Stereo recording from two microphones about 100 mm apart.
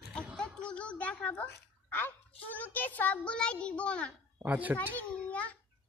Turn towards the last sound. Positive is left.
turn(degrees=15)  # may be behind; listen again after turning